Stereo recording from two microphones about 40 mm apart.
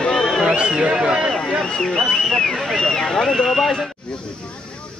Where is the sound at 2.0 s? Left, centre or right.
Centre.